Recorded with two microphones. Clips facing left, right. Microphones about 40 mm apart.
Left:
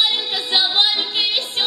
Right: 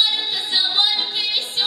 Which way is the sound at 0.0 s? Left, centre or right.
Left.